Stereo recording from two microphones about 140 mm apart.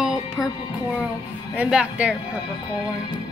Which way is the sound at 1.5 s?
10° right (ahead or behind).